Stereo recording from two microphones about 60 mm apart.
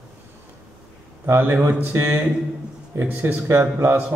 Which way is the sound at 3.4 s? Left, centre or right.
Right.